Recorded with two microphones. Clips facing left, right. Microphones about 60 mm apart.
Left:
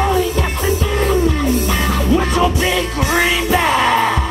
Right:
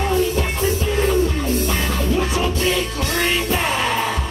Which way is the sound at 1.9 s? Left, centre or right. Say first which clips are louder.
Left 4 dB; left.